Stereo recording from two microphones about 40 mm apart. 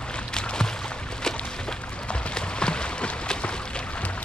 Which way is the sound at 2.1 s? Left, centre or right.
Left.